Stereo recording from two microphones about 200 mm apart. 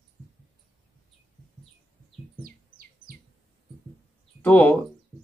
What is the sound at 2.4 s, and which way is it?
Bird, 50° right (ahead or behind).